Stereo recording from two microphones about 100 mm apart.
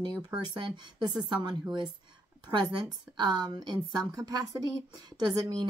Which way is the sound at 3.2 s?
45° right (ahead or behind).